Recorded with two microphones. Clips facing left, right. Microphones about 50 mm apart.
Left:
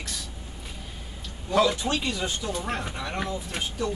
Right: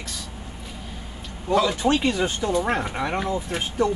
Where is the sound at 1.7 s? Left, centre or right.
Right.